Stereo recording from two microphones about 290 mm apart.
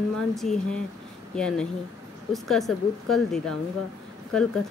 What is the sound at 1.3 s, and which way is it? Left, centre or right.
Speech, centre.